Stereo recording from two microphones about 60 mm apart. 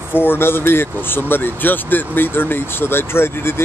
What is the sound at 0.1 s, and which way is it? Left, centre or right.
Speech, left.